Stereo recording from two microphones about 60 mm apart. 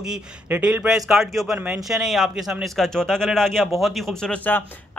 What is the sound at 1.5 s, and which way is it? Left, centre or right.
Speech, right.